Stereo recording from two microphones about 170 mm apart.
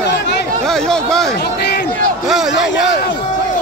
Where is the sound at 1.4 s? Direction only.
75° left (ahead or behind).